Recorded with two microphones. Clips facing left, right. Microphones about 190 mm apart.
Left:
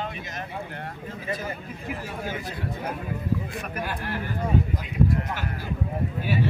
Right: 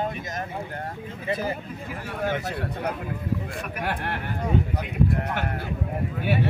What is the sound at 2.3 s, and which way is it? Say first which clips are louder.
A man's voice: right 6 dB; 70° right (ahead or behind).